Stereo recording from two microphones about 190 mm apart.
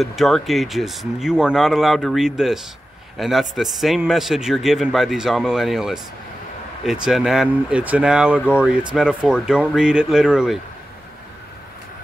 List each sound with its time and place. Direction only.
0.0 s a man's voice: centre (ahead or behind)